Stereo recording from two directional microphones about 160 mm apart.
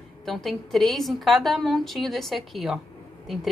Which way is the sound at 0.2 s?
Centre (ahead or behind).